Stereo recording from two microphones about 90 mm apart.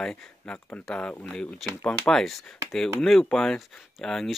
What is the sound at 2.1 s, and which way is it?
Speech, 5° left (ahead or behind).